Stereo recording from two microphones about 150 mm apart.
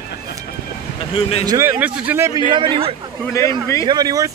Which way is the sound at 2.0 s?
15° right (ahead or behind).